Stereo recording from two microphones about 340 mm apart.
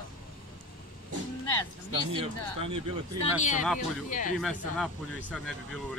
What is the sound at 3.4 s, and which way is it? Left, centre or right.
Speech, left.